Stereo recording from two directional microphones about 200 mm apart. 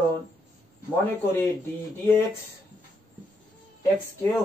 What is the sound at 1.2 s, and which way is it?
Speech, 10° left (ahead or behind).